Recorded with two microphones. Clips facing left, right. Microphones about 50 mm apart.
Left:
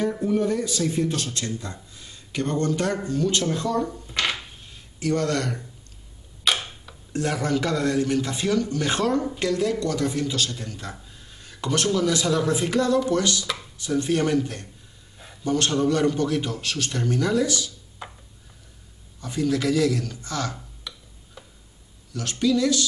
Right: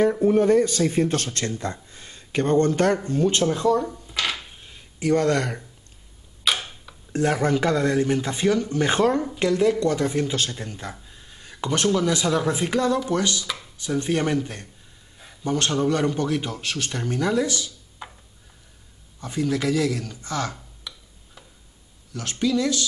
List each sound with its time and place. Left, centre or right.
0.1 s speech: right
0.4 s speech: right
3.9 s a sound: centre
4.9 s speech: right
6.4 s tick-tock: centre
7.1 s a man's voice: right
18.0 s a sound: centre
19.2 s a man's voice: centre
20.9 s tick-tock: centre
22.1 s speech: centre